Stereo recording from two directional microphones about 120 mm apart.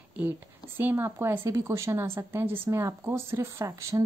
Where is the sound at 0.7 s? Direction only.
20° right (ahead or behind).